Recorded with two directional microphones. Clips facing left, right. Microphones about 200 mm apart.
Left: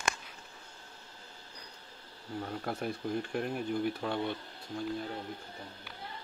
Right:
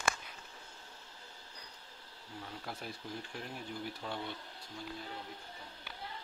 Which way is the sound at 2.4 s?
55° left (ahead or behind).